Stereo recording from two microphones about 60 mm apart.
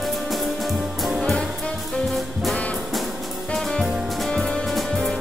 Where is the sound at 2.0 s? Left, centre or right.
Centre.